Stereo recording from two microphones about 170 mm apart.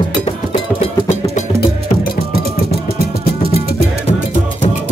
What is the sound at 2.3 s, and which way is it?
Music, 35° right (ahead or behind).